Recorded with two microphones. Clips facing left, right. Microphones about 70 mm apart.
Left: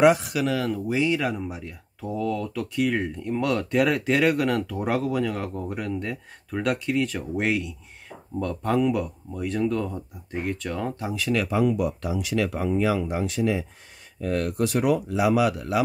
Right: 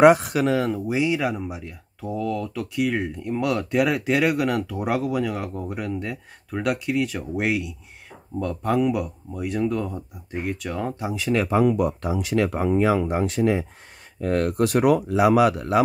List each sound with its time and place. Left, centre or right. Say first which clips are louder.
0.0 s speech: right 4 dB; right
0.6 s speech: right 2 dB; right
11.4 s speech: right 5 dB; right